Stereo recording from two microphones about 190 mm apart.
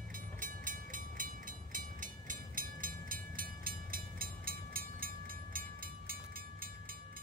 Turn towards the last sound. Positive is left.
turn(degrees=-50)  # may be behind; listen again after turning